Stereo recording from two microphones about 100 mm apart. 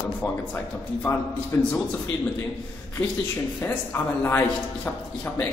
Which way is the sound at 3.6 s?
20° left (ahead or behind).